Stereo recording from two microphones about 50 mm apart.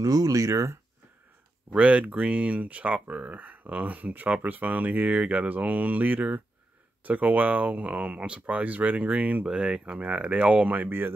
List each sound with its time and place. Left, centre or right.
0.4 s speech: right
1.7 s speech: right
10.8 s speech: right